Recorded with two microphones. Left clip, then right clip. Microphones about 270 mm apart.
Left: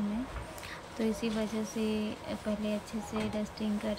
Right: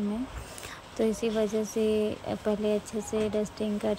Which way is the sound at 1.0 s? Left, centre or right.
Right.